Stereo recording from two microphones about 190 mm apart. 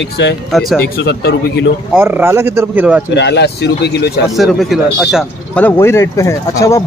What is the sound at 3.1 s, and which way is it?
Speech, 65° left (ahead or behind).